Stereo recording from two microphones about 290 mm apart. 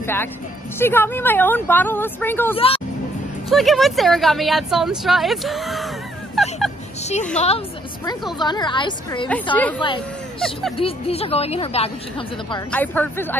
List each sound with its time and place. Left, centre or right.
0.0 s speech: centre
2.5 s speech: centre
3.4 s speech: centre
7.3 s a woman's voice: left
9.3 s speech: centre
10.8 s a woman's voice: centre
12.7 s speech: centre